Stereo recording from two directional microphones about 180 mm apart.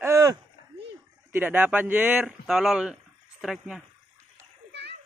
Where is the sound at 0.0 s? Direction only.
20° right (ahead or behind).